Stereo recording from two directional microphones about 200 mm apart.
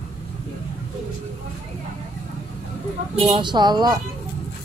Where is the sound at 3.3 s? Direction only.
25° right (ahead or behind).